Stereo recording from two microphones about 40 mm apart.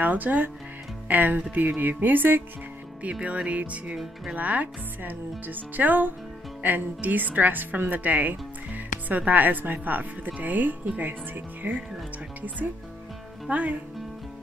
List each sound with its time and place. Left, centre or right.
0.0 s a woman's voice: right
3.0 s a woman's voice: right
12.4 s speech: right